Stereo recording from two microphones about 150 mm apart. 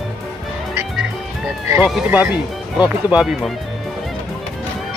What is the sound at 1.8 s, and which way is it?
Speech, 5° right (ahead or behind).